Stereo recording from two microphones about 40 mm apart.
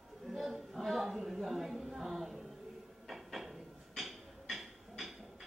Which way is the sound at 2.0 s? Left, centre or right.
Centre.